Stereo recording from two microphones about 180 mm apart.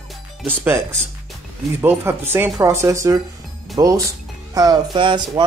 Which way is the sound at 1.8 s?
10° right (ahead or behind).